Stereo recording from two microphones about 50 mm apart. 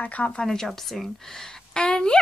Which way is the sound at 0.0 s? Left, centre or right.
Left.